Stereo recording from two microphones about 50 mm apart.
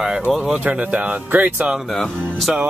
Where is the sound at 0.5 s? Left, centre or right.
Right.